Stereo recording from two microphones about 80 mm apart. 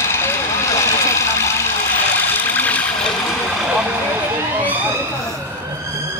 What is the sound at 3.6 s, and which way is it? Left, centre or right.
Vehicle, centre.